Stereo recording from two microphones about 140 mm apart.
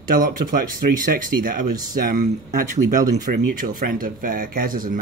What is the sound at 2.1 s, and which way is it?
Speech, 60° right (ahead or behind).